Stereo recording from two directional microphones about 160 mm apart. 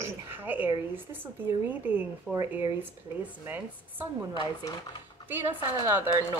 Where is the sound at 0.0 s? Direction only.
10° right (ahead or behind).